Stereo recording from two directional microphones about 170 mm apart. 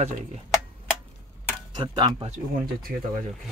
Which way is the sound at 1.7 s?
25° right (ahead or behind).